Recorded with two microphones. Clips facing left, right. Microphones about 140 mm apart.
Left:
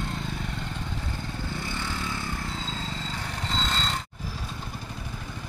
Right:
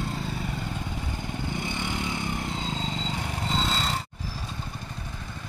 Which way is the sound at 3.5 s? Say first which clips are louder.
Right 1 dB; 10° right (ahead or behind).